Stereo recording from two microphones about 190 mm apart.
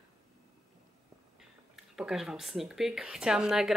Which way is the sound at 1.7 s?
Centre (ahead or behind).